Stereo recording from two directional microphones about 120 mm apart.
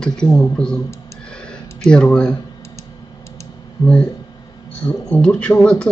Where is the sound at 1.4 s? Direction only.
5° left (ahead or behind).